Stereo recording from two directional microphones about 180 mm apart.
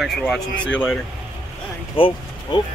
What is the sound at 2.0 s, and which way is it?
Speech, 30° left (ahead or behind).